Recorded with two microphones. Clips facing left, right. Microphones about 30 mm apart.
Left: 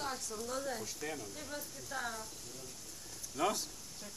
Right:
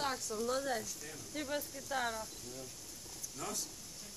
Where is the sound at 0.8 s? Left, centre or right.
Left.